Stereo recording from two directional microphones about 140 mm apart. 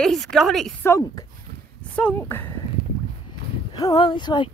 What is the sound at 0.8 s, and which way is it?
Speech, 20° left (ahead or behind).